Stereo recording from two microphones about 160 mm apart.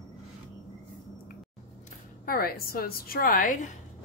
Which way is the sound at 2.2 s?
70° left (ahead or behind).